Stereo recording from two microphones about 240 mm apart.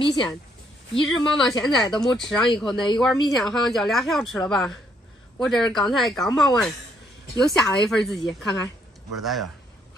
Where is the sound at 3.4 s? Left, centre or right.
Centre.